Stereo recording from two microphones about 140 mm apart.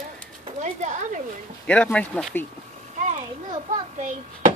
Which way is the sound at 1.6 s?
10° left (ahead or behind).